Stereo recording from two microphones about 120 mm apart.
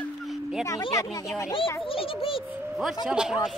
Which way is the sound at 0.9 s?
25° left (ahead or behind).